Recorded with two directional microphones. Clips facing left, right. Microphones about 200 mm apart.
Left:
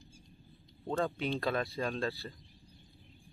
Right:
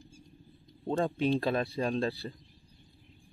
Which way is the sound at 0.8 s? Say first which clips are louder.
Right 5 dB; 25° right (ahead or behind).